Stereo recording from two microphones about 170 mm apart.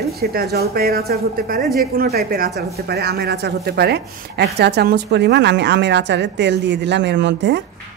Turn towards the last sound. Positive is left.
turn(degrees=-90)